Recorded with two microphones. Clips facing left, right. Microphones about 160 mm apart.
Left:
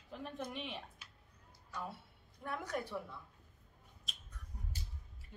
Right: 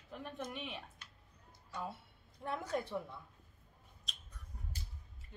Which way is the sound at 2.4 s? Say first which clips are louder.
Right 2 dB; 25° right (ahead or behind).